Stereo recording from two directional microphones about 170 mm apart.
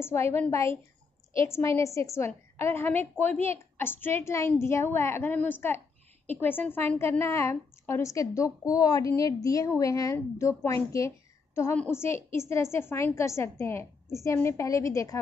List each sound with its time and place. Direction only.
0.0 s a woman's voice: 15° left (ahead or behind)